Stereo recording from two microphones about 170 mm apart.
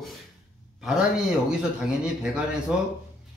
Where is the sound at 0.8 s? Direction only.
5° right (ahead or behind).